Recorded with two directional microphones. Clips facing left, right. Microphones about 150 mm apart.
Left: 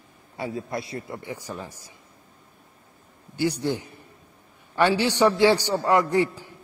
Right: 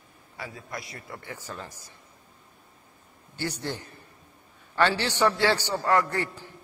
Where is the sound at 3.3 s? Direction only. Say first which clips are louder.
Left 8 dB; 10° left (ahead or behind).